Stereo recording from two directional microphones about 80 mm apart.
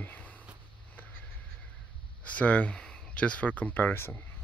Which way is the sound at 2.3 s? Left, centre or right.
Centre.